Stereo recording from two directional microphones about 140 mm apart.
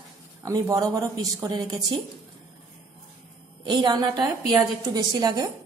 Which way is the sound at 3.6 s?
30° right (ahead or behind).